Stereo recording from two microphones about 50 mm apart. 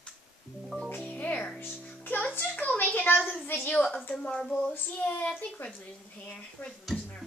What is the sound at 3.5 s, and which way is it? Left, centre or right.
Child singing, left.